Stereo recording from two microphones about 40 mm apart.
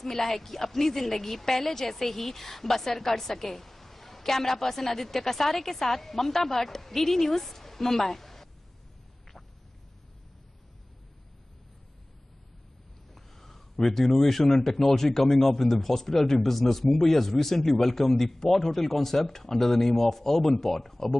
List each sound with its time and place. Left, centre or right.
0.0 s a woman's voice: centre
13.1 s a woman's voice: centre